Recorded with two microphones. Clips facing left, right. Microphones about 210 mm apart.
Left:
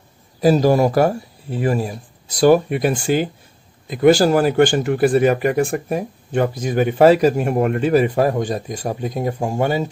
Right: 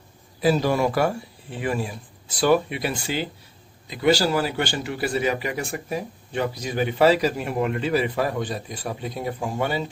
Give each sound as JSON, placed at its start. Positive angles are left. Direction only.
{"t": 0.4, "sound": "a man's voice", "side_deg": 40}